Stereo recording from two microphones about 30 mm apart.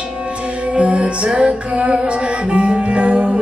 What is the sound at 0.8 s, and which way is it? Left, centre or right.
Music, right.